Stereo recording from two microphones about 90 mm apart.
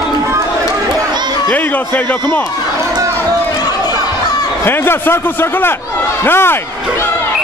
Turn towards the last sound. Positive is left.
turn(degrees=25)  # may be behind; listen again after turning